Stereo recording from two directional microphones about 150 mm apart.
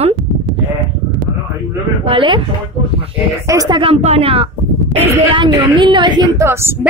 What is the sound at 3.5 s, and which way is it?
Speech, 25° right (ahead or behind).